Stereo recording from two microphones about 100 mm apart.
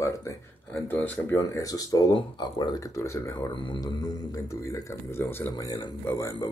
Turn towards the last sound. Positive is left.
turn(degrees=30)  # may be behind; listen again after turning